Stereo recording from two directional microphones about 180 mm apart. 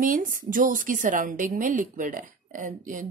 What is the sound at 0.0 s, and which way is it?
A woman's voice, 50° right (ahead or behind).